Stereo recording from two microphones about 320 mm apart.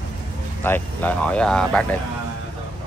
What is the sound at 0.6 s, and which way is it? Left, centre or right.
A man's voice, centre.